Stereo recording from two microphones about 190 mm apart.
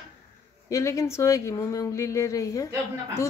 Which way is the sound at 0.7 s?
15° left (ahead or behind).